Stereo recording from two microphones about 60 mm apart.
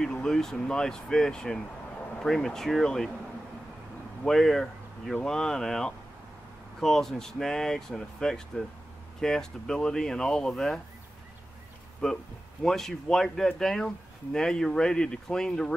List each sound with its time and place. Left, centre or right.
0.0 s speech: centre
4.3 s speech: centre
12.0 s speech: centre